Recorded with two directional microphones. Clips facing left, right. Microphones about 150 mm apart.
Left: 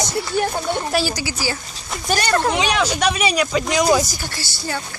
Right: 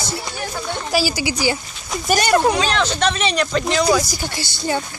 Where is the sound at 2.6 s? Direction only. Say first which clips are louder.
Even; 10° left (ahead or behind).